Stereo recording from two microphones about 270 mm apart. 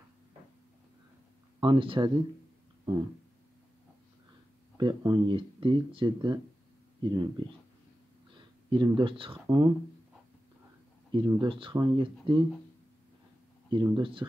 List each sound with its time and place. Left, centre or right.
1.6 s speech: centre
4.7 s speech: centre
8.6 s speech: centre
11.1 s speech: centre
13.7 s speech: centre